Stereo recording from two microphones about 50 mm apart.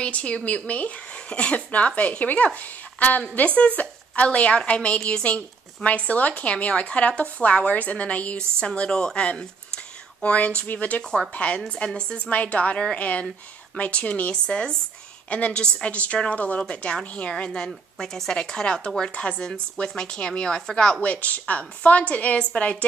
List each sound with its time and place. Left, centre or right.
0.0 s a woman's voice: left
8.4 s a woman's voice: centre
17.9 s a woman's voice: centre
21.0 s a woman's voice: left